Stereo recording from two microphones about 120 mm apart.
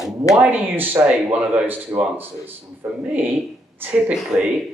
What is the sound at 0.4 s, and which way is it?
Speech, 15° right (ahead or behind).